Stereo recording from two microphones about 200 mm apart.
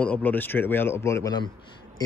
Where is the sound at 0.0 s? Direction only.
10° left (ahead or behind).